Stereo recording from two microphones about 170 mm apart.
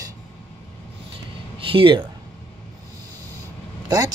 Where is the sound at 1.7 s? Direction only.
30° right (ahead or behind).